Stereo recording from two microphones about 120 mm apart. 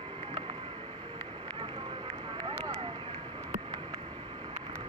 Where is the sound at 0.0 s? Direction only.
50° right (ahead or behind).